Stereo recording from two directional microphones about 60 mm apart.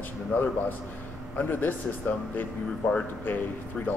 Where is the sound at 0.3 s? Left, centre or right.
Left.